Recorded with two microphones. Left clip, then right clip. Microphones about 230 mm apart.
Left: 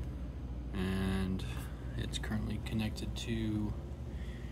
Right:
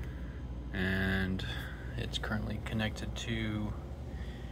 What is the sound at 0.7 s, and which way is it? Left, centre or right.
Speech, centre.